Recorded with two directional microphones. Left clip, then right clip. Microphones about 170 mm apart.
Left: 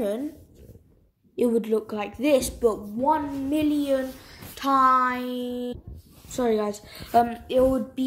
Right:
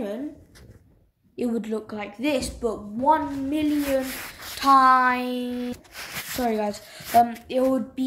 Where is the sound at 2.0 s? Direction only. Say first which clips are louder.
Left 3 dB; 15° left (ahead or behind).